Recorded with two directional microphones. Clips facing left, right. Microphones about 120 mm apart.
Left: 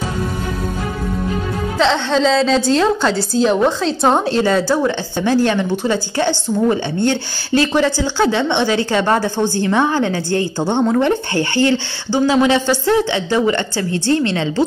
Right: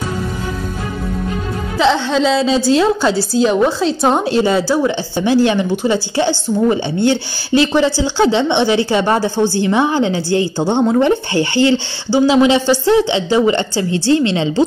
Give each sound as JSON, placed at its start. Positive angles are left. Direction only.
{"t": 1.8, "sound": "a woman's voice", "side_deg": -5}